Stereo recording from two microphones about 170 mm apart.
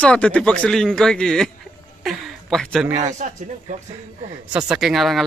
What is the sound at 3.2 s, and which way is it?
Speech, 50° right (ahead or behind).